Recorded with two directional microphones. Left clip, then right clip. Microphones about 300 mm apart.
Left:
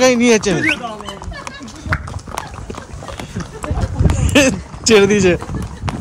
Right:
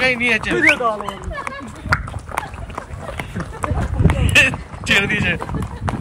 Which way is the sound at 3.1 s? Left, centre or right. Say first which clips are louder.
Right 1 dB; centre.